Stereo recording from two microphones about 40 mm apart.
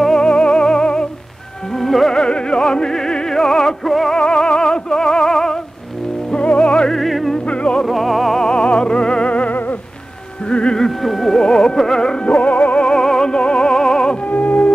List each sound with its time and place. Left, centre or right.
0.2 s music: left
1.7 s music: centre
2.1 s music: left; by 4.1 s centre
4.1 s music: centre
6.3 s music: left
6.9 s music: centre
7.4 s music: left
7.8 s music: centre
8.4 s music: left
10.8 s a sound: centre
11.3 s carnatic music: centre
12.3 s music: left
12.8 s music: centre
14.2 s music: left